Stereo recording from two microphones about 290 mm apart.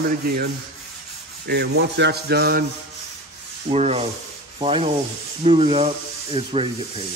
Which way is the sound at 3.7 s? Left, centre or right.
Right.